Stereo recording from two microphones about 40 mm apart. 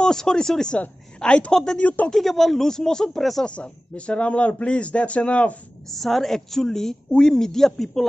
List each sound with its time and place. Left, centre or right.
0.0 s a woman's voice: centre
1.2 s a woman's voice: left
1.5 s a woman's voice: centre
1.8 s speech: left
2.1 s a woman's voice: centre
3.2 s speech: centre
3.4 s speech: left
5.9 s a woman's voice: centre